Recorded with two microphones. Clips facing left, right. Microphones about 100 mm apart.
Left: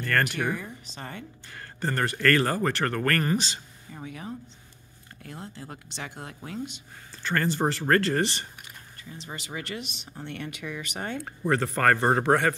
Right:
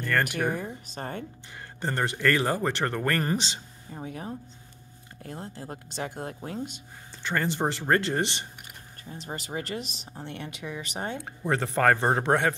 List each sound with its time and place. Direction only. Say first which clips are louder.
0.0 s speech: even; 10° right (ahead or behind)
0.4 s speech: right 1 dB; 45° right (ahead or behind)
1.5 s speech: left 2 dB; 20° right (ahead or behind)
3.9 s speech: right 1 dB; 35° right (ahead or behind)
7.2 s speech: left 1 dB; 20° right (ahead or behind)
9.0 s speech: right 3 dB; 40° right (ahead or behind)
10.1 s speech: left 2 dB; 25° right (ahead or behind)